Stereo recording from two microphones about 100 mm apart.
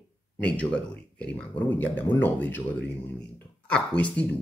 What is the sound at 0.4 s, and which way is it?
Speech, 10° left (ahead or behind).